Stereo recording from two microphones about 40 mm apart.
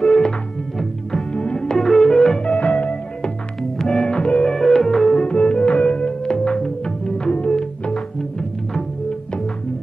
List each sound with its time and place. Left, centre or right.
1.3 s music: left
1.8 s music: centre
2.4 s music: left
3.7 s music: centre
4.1 s music: left
4.5 s music: centre
5.3 s music: left
7.9 s music: centre